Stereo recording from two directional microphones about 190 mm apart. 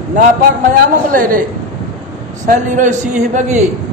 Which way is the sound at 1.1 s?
45° right (ahead or behind).